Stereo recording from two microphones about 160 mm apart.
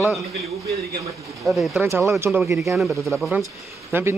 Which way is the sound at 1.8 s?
15° right (ahead or behind).